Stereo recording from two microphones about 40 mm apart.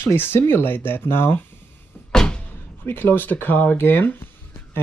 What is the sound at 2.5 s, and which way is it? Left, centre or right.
Speech, left.